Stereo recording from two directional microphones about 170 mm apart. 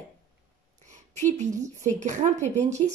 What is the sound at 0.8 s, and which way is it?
A woman's voice, 45° right (ahead or behind).